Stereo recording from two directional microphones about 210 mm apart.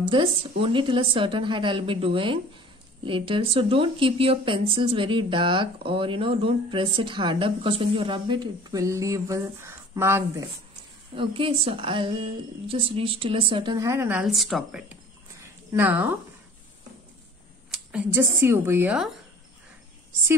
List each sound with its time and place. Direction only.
0.0 s speech: 25° right (ahead or behind)
11.1 s speech: 25° right (ahead or behind); by 16.2 s 10° right (ahead or behind)
17.7 s speech: 10° right (ahead or behind)